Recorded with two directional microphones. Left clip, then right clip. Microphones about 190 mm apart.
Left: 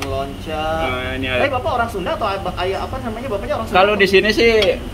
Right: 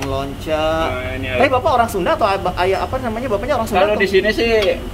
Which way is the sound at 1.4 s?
55° right (ahead or behind).